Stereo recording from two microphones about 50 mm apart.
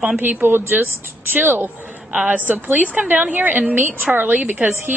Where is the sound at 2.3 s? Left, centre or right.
Right.